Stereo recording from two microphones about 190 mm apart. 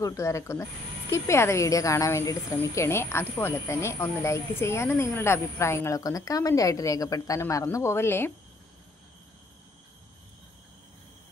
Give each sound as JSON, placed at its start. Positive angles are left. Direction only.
{"t": 0.0, "sound": "a woman's voice", "side_deg": 15}